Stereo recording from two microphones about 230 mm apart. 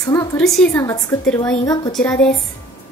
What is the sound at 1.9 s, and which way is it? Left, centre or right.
Speech, centre.